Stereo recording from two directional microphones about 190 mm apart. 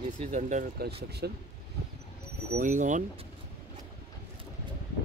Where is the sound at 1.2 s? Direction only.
60° right (ahead or behind).